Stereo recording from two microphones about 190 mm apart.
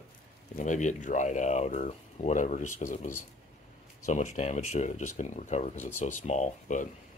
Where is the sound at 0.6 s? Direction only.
40° left (ahead or behind).